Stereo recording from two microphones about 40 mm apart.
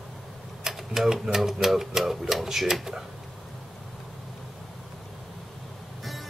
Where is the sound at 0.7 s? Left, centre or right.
Centre.